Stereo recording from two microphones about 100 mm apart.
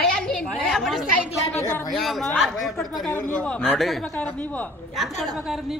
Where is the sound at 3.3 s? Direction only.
15° left (ahead or behind).